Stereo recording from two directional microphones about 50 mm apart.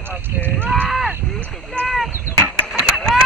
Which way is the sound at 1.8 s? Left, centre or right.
Left.